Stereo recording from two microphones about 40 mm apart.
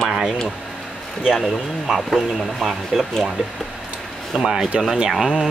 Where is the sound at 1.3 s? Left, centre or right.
Centre.